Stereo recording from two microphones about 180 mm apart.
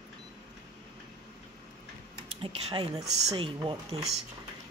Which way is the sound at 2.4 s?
30° right (ahead or behind).